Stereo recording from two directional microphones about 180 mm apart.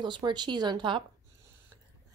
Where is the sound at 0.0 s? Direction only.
25° right (ahead or behind).